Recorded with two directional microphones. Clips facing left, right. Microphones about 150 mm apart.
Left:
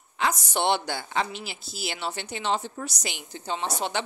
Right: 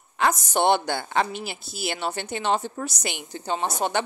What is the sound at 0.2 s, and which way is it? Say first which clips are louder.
Speech: right 4 dB; 50° right (ahead or behind).